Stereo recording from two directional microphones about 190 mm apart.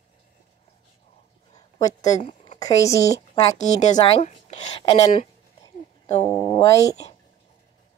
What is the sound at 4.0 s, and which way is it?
Speech, 35° left (ahead or behind).